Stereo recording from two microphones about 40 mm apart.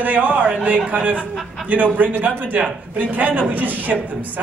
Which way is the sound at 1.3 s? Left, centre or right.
Centre.